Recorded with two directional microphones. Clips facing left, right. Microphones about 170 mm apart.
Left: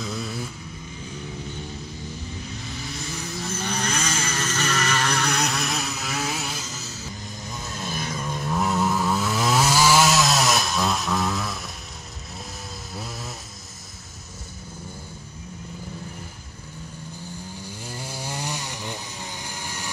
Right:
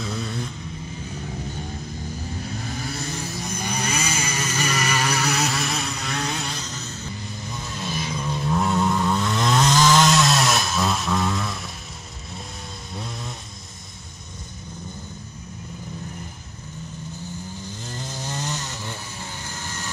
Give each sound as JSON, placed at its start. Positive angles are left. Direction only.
{"t": 0.0, "sound": "vehicle", "side_deg": 0}
{"t": 2.5, "sound": "vehicle", "side_deg": -50}
{"t": 3.4, "sound": "vehicle", "side_deg": -10}
{"t": 7.9, "sound": "vehicle", "side_deg": 50}
{"t": 8.2, "sound": "chainsaw", "side_deg": 0}
{"t": 12.9, "sound": "chainsaw", "side_deg": 5}
{"t": 17.6, "sound": "chainsaw", "side_deg": 10}